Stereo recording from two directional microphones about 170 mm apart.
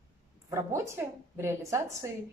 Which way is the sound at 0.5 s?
15° right (ahead or behind).